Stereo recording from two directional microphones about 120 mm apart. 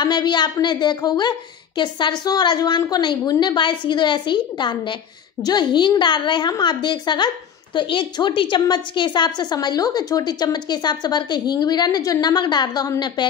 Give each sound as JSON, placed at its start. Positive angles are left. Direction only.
{"t": 0.0, "sound": "a woman's voice", "side_deg": 40}